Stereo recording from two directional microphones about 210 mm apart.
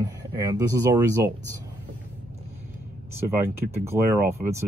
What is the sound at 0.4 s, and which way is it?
Speech, 15° right (ahead or behind).